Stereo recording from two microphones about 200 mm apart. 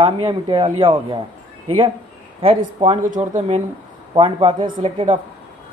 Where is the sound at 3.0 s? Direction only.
40° right (ahead or behind).